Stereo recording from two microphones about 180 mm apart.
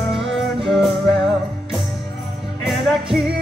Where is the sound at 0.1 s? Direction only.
Centre (ahead or behind).